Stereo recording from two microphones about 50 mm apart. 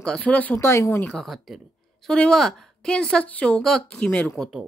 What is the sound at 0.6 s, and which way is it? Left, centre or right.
Speech, left.